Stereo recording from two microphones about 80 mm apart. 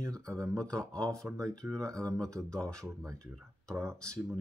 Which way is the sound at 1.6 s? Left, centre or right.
Right.